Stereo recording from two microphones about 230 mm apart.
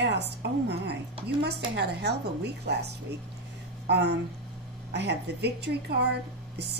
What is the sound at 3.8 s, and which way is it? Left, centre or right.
A woman's voice, right.